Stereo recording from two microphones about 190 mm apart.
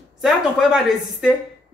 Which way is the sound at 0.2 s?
Centre (ahead or behind).